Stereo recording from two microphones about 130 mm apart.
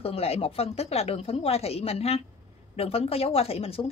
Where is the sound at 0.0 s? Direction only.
50° left (ahead or behind).